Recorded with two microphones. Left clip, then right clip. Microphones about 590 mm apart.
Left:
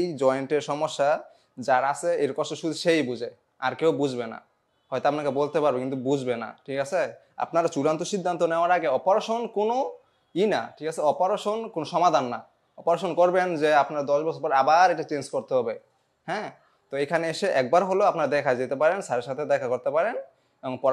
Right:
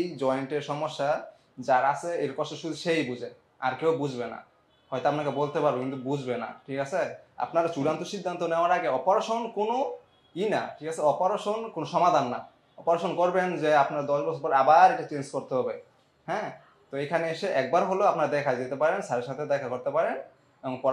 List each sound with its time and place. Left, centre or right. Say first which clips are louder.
0.1 s a man's voice: left 5 dB; left
16.9 s a man's voice: left 3 dB; left